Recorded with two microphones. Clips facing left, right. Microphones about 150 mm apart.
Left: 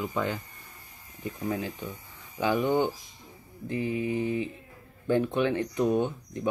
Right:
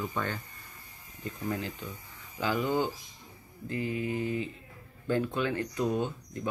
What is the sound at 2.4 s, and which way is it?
Mantra, 20° left (ahead or behind).